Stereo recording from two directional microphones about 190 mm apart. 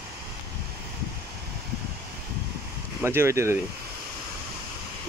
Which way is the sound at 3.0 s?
15° right (ahead or behind).